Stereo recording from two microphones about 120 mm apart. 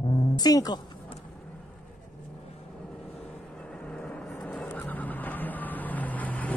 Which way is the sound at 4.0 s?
10° left (ahead or behind).